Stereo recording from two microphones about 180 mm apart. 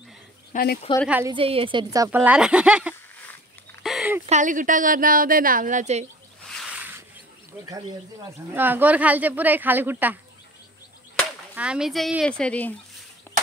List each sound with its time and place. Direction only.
0.5 s speech: 55° left (ahead or behind)
1.2 s speech: 30° right (ahead or behind); by 2.9 s 5° right (ahead or behind)
3.8 s a sound: 5° right (ahead or behind)
4.3 s speech: 45° right (ahead or behind)
8.3 s speech: 10° right (ahead or behind)
11.5 s speech: 5° right (ahead or behind)
13.3 s a sound: 10° left (ahead or behind)